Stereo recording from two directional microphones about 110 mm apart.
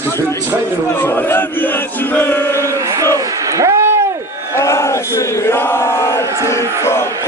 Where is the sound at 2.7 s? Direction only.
30° right (ahead or behind).